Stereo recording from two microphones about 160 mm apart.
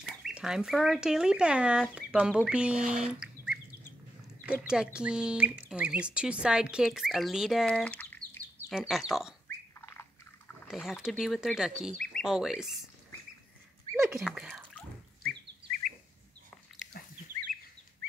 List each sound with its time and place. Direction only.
0.0 s speech: 5° right (ahead or behind)
8.7 s speech: centre (ahead or behind)
9.8 s squawk: 15° left (ahead or behind)
10.7 s speech: centre (ahead or behind)
14.0 s speech: 5° right (ahead or behind)